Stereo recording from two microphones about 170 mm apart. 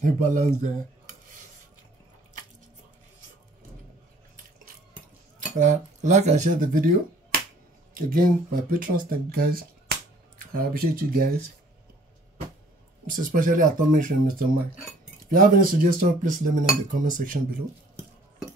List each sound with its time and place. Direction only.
0.0 s speech: 50° right (ahead or behind)
5.6 s speech: 45° right (ahead or behind); by 11.5 s 65° right (ahead or behind)
13.1 s speech: 50° right (ahead or behind)